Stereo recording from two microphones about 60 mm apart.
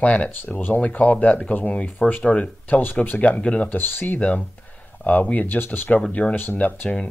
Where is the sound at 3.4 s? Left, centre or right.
Centre.